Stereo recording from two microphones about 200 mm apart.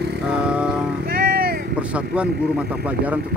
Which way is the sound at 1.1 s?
50° right (ahead or behind).